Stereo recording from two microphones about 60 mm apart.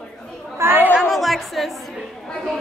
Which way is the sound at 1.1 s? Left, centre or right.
Centre.